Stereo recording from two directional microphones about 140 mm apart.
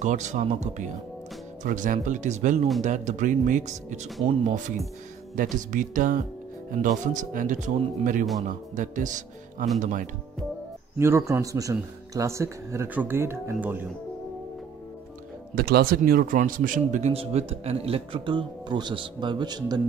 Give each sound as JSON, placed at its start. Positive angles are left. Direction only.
{"t": 0.0, "sound": "speech", "side_deg": -60}
{"t": 1.6, "sound": "speech", "side_deg": -70}
{"t": 5.3, "sound": "speech", "side_deg": -75}
{"t": 11.0, "sound": "speech", "side_deg": -20}
{"t": 15.5, "sound": "speech", "side_deg": -90}
{"t": 17.1, "sound": "a man's voice", "side_deg": -45}